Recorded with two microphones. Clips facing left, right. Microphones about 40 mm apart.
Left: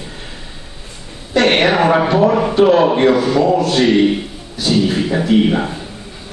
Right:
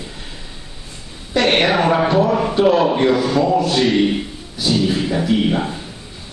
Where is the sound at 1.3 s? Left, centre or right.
Left.